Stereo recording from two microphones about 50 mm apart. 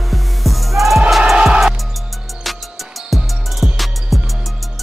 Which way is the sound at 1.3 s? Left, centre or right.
Centre.